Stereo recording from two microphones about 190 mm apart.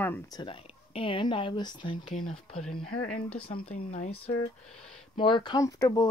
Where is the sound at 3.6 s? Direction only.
40° left (ahead or behind).